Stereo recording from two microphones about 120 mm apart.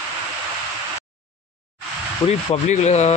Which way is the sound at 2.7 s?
70° left (ahead or behind).